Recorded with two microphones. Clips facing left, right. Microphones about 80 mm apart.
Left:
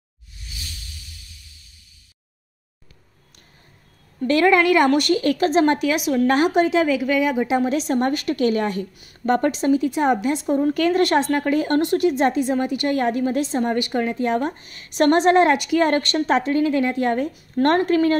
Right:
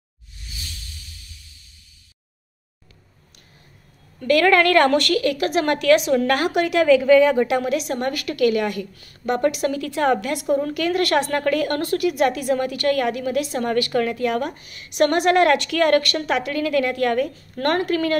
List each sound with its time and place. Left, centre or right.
4.2 s a woman's voice: left
5.2 s a woman's voice: left; by 6.2 s centre
6.2 s a woman's voice: left
7.4 s a woman's voice: left
7.7 s a woman's voice: left
9.7 s a woman's voice: centre
10.5 s a woman's voice: left